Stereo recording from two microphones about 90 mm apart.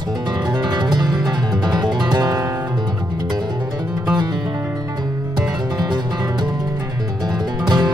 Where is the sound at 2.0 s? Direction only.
45° right (ahead or behind).